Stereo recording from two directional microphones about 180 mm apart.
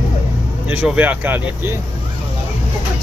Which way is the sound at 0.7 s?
10° right (ahead or behind).